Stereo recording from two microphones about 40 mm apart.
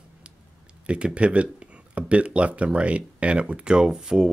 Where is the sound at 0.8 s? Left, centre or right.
Right.